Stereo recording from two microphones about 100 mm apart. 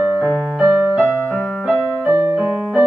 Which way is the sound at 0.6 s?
5° right (ahead or behind).